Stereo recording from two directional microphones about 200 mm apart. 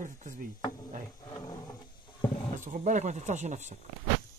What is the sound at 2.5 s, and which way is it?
Speech, 40° right (ahead or behind).